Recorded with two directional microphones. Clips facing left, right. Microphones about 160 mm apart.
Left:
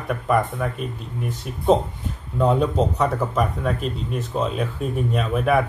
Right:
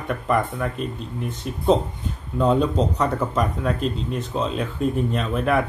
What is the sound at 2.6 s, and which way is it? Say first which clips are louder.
Speech: left 1 dB; 5° left (ahead or behind).